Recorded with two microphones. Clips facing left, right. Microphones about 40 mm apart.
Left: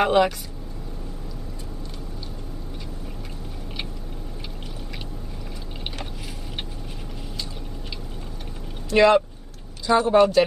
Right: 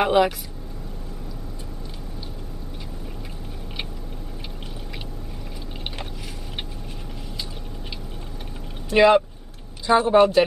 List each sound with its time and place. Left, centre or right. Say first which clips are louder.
0.0 s speech: even; centre
8.9 s speech: right 1 dB; centre